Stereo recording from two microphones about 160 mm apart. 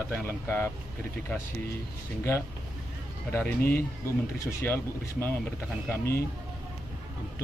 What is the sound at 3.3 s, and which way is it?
Speech, 15° left (ahead or behind).